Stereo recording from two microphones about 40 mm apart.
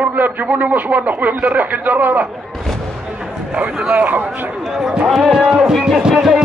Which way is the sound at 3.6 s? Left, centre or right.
Right.